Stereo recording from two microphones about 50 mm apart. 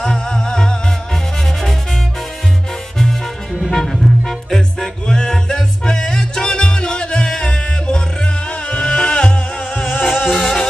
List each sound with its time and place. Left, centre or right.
0.0 s music: centre
3.7 s music: centre
10.0 s music: centre